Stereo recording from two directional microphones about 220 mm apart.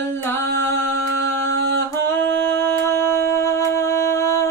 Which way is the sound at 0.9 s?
55° right (ahead or behind).